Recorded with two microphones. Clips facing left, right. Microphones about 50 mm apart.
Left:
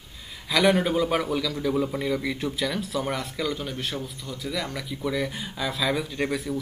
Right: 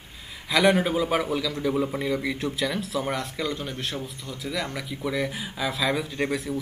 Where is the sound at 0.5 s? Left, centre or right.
Centre.